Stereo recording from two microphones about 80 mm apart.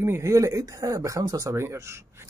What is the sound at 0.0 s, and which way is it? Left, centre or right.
Speech, right.